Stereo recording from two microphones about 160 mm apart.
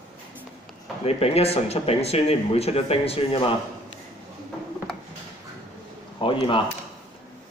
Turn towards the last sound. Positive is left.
turn(degrees=35)  # may be behind; listen again after turning